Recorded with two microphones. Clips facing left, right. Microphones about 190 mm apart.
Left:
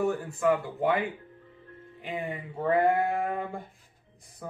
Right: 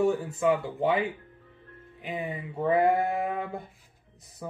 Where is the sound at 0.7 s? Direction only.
15° right (ahead or behind).